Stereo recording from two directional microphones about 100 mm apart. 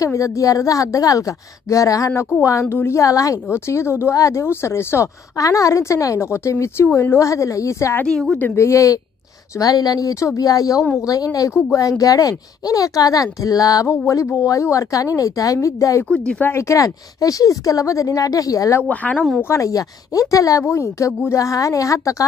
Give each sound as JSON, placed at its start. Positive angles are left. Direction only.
{"t": 0.0, "sound": "a woman's voice", "side_deg": 35}
{"t": 8.0, "sound": "speech", "side_deg": 5}
{"t": 8.5, "sound": "speech", "side_deg": 30}
{"t": 16.1, "sound": "speech", "side_deg": 10}
{"t": 16.4, "sound": "speech", "side_deg": 30}
{"t": 18.8, "sound": "speech", "side_deg": 15}
{"t": 19.4, "sound": "speech", "side_deg": 30}